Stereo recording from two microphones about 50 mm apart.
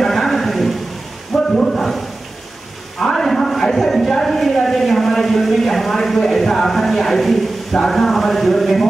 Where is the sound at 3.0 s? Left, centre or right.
Centre.